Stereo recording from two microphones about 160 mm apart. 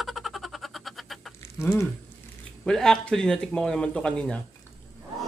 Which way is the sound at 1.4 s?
15° left (ahead or behind).